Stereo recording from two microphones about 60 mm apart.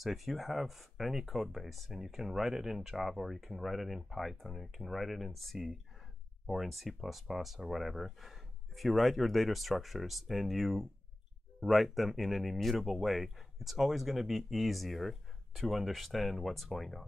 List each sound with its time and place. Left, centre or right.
0.0 s speech: centre